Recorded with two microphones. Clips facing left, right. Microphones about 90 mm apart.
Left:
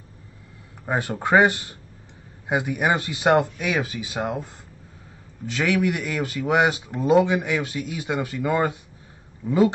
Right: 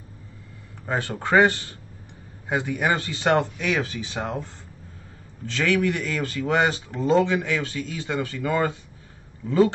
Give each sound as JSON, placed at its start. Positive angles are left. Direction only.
{"t": 0.8, "sound": "speech", "side_deg": 15}
{"t": 5.5, "sound": "speech", "side_deg": 10}